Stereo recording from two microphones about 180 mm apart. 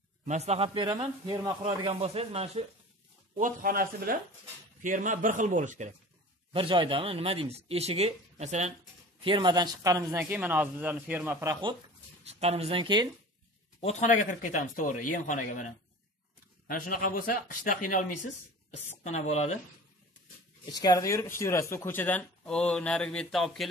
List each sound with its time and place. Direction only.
0.2 s speech: 40° right (ahead or behind)
1.2 s speech: 20° right (ahead or behind)
3.3 s a man's voice: 50° right (ahead or behind)
6.5 s speech: 30° right (ahead or behind)
9.2 s speech: 25° right (ahead or behind); by 11.5 s 10° right (ahead or behind)
12.3 s speech: 35° right (ahead or behind)
13.7 s speech: 35° left (ahead or behind)
20.7 s speech: 20° left (ahead or behind); by 23.7 s centre (ahead or behind)